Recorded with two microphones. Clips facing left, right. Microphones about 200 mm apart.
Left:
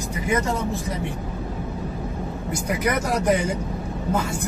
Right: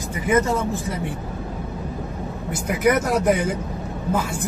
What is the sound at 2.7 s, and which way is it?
Speech, 5° right (ahead or behind).